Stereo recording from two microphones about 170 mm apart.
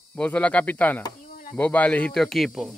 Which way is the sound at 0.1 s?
5° left (ahead or behind).